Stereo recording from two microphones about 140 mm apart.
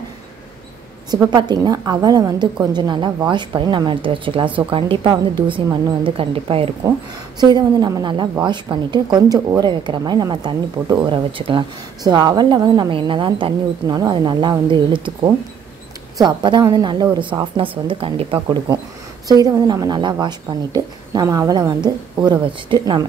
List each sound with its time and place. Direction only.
1.1 s speech: 30° right (ahead or behind)
7.3 s speech: 30° right (ahead or behind)
16.3 s speech: 30° right (ahead or behind)
19.2 s a woman's voice: 25° right (ahead or behind)